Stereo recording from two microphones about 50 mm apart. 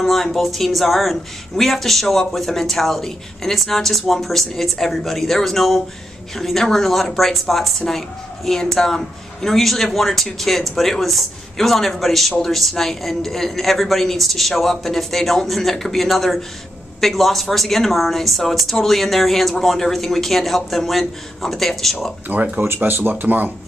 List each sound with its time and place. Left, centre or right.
0.0 s a man's voice: centre
22.3 s speech: right
22.8 s speech: right